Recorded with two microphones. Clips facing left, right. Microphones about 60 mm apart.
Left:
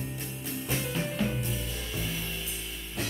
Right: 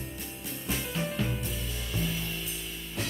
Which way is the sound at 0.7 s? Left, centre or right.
Centre.